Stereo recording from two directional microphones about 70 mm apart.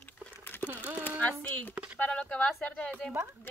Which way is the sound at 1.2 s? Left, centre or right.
Left.